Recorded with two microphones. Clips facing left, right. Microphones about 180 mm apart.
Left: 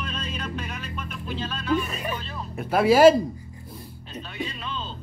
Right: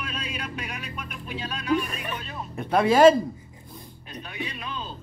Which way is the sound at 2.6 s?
5° left (ahead or behind).